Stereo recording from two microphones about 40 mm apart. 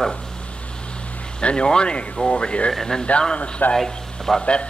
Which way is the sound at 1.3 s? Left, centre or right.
Left.